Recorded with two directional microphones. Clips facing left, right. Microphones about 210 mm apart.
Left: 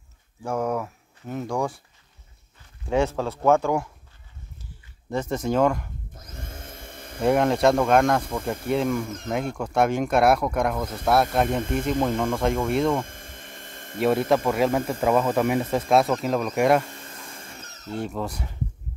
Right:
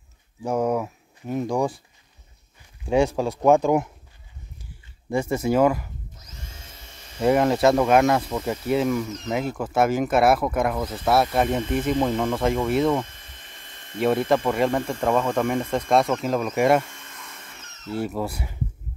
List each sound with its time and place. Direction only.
0.4 s speech: 15° right (ahead or behind)
2.8 s speech: 15° right (ahead or behind)
5.1 s speech: 10° right (ahead or behind)
6.1 s vacuum cleaner: 55° left (ahead or behind)
7.2 s speech: centre (ahead or behind)
9.0 s speech: 50° left (ahead or behind)
9.3 s speech: 5° right (ahead or behind)
11.6 s speech: 50° left (ahead or behind)
12.0 s speech: centre (ahead or behind)
13.0 s a sound: 50° left (ahead or behind)
13.9 s speech: centre (ahead or behind)
16.9 s vacuum cleaner: 35° left (ahead or behind)
17.9 s speech: 5° right (ahead or behind)